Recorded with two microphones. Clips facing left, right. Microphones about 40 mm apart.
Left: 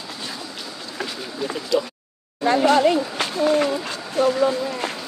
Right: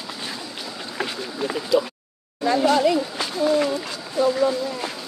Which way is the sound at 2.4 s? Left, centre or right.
Left.